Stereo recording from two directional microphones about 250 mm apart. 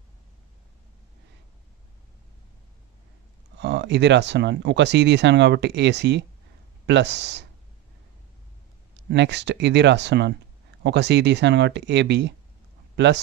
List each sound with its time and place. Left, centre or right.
3.5 s speech: right
9.1 s speech: right